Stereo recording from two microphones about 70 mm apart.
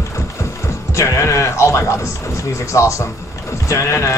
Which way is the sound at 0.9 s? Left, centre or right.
Left.